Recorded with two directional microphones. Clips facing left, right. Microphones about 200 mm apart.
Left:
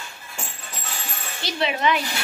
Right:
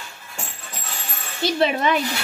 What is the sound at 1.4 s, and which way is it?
Speech, 50° right (ahead or behind).